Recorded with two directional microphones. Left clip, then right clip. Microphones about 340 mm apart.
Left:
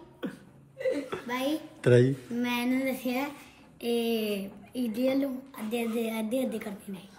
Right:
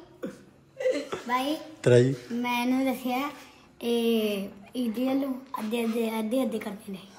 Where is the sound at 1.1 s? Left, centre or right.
Centre.